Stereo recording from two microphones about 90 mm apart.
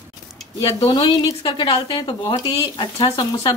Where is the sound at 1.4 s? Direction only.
85° left; by 2.5 s 55° left (ahead or behind).